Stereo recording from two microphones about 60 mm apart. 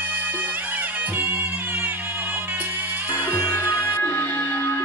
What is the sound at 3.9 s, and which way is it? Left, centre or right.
Music, left.